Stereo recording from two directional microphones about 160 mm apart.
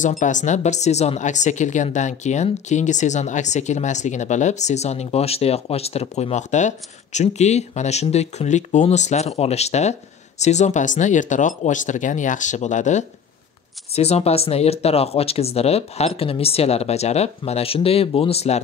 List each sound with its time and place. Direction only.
0.0 s speech: 50° left (ahead or behind)